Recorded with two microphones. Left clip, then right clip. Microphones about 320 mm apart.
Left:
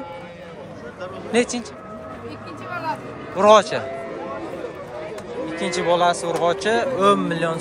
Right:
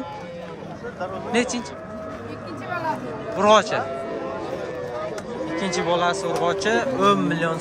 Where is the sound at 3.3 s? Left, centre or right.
Centre.